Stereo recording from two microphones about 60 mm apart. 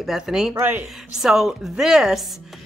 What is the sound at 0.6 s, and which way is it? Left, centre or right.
Speech, right.